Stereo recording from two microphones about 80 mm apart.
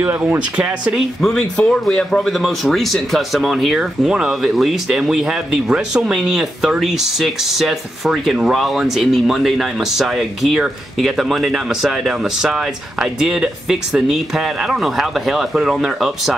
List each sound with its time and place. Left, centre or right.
0.0 s speech: right
0.9 s speech: centre